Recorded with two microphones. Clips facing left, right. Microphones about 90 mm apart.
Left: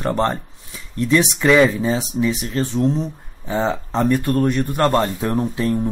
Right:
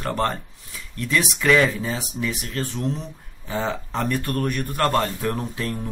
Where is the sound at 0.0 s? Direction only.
25° left (ahead or behind).